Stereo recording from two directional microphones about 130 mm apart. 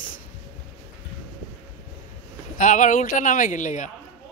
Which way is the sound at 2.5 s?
75° left (ahead or behind).